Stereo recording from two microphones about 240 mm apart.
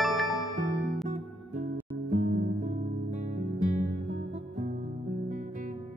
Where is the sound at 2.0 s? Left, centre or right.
Right.